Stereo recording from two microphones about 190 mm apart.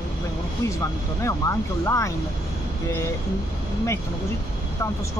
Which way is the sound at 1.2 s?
15° left (ahead or behind).